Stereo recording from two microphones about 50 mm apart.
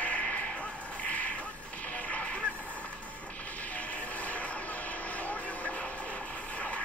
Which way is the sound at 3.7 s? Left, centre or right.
Left.